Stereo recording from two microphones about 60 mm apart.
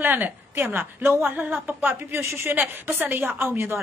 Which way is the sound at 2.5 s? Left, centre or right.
Right.